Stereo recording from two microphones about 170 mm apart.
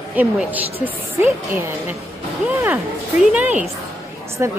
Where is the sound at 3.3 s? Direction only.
10° right (ahead or behind).